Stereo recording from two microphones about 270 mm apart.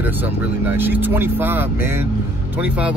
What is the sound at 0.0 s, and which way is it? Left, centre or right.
Speech, centre.